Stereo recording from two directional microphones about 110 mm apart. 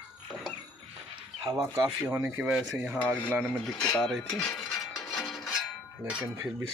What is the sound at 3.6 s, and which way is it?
Speech, 5° left (ahead or behind).